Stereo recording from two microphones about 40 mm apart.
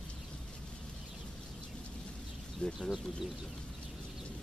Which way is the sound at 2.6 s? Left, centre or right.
Left.